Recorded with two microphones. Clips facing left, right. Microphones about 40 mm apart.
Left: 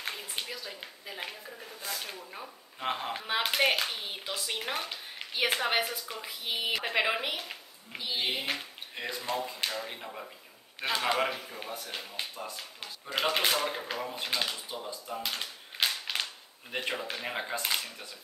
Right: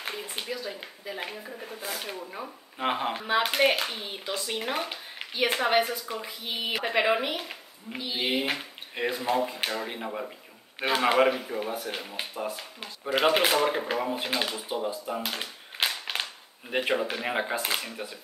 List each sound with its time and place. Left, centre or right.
0.2 s speech: centre; by 3.1 s right
3.3 s speech: centre
4.6 s speech: centre
5.3 s a woman's voice: centre